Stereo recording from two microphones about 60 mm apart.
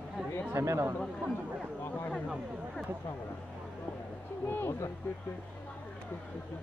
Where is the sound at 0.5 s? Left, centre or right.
Right.